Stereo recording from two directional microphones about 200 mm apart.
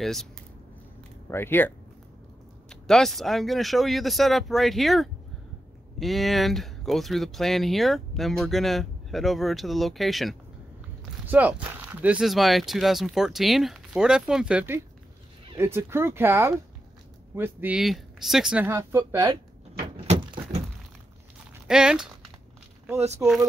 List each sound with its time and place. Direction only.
0.0 s speech: centre (ahead or behind)
1.3 s speech: 10° left (ahead or behind)
2.7 s speech: centre (ahead or behind)
20.1 s a sound: 30° right (ahead or behind)
21.6 s speech: 5° right (ahead or behind)